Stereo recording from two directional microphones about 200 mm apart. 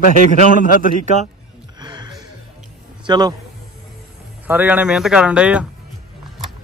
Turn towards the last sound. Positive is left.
turn(degrees=-5)  # may be behind; listen again after turning